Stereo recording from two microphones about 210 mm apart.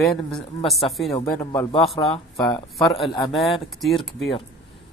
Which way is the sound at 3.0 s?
20° left (ahead or behind).